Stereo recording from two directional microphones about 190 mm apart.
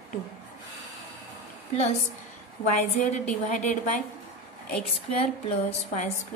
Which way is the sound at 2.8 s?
35° left (ahead or behind).